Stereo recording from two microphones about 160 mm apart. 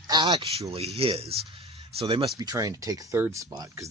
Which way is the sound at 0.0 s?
25° right (ahead or behind).